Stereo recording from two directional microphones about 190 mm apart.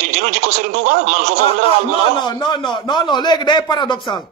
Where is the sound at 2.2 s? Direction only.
25° left (ahead or behind).